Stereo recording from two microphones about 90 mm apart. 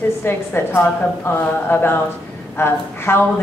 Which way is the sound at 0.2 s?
30° left (ahead or behind).